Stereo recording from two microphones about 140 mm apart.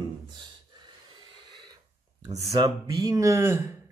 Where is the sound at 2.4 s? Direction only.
25° right (ahead or behind).